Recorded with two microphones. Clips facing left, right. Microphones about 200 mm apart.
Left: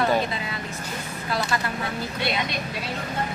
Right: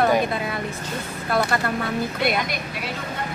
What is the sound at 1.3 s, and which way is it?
Speech, 55° right (ahead or behind).